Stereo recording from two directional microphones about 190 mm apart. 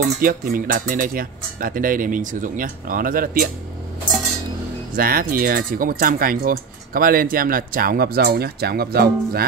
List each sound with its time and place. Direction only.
0.0 s speech: 50° right (ahead or behind)
4.9 s speech: 50° right (ahead or behind)